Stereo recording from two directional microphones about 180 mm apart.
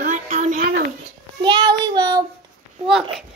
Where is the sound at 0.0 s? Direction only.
40° right (ahead or behind).